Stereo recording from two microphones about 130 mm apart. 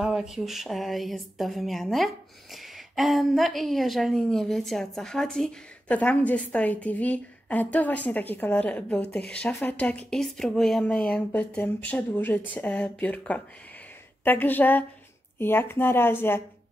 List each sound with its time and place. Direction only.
0.0 s speech: 5° right (ahead or behind); by 16.4 s 15° left (ahead or behind)